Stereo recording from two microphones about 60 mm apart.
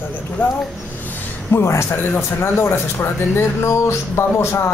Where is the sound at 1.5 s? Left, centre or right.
Left.